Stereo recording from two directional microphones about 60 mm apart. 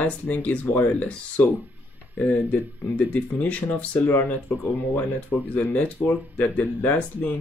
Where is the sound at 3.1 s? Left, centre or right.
Left.